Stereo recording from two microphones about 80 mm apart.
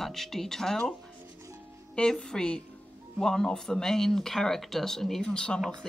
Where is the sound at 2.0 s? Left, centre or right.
Centre.